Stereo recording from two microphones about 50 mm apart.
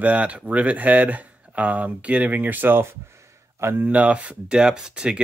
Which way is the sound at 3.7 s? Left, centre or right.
Right.